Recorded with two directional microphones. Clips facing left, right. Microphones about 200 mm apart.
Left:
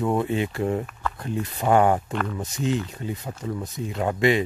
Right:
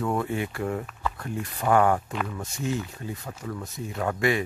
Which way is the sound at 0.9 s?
5° right (ahead or behind).